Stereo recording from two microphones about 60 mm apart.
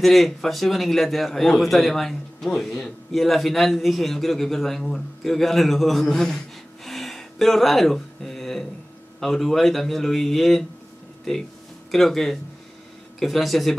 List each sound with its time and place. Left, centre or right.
0.0 s a man's voice: centre